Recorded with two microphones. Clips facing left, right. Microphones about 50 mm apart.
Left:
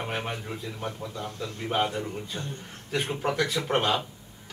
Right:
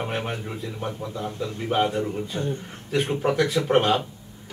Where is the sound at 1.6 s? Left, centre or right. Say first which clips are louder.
Right 4 dB; centre.